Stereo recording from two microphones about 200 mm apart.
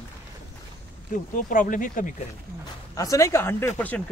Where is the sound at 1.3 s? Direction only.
40° left (ahead or behind).